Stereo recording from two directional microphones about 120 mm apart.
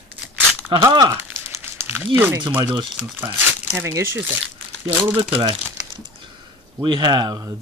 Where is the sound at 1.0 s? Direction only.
20° right (ahead or behind).